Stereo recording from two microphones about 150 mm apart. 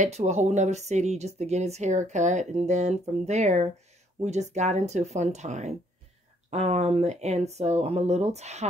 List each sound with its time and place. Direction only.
0.0 s speech: 50° right (ahead or behind)